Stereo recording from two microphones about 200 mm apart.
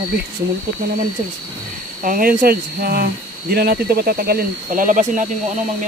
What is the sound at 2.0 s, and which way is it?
Speech, 45° right (ahead or behind).